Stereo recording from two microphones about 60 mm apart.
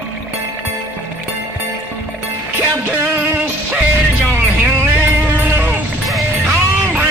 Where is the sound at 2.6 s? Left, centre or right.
Right.